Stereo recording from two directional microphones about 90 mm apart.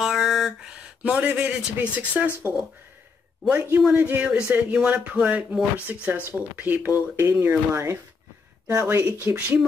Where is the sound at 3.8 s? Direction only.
20° right (ahead or behind).